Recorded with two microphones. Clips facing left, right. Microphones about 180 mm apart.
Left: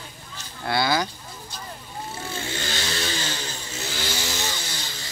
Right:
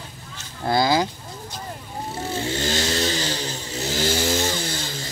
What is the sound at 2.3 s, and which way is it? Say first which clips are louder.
Vehicle: right 7 dB; 35° right (ahead or behind).